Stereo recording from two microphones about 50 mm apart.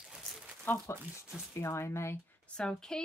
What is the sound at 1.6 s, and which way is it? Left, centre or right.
Speech, left.